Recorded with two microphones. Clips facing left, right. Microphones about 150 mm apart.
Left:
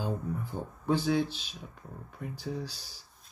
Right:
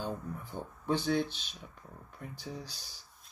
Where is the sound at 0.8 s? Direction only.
5° left (ahead or behind).